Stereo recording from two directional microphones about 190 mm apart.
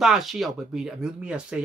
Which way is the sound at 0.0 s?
Centre (ahead or behind).